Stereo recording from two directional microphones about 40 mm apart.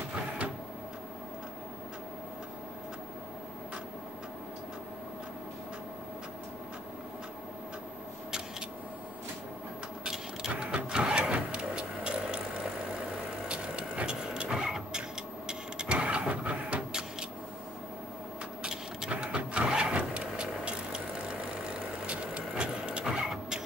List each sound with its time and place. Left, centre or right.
10.0 s printer: centre
10.5 s vehicle: right
13.5 s vehicle: right
15.9 s a sound: right
18.6 s vehicle: centre
19.0 s vehicle: right
23.0 s vehicle: centre